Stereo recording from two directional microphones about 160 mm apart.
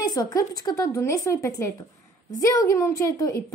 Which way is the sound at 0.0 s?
25° left (ahead or behind).